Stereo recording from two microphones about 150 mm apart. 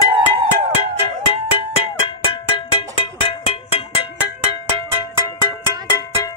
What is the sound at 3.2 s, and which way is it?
Music, 35° left (ahead or behind).